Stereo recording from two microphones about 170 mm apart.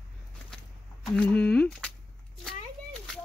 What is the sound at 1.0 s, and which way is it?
Speech, 5° left (ahead or behind).